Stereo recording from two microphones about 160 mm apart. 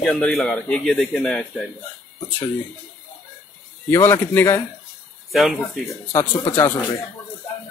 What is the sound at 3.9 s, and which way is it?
Speech, 15° left (ahead or behind).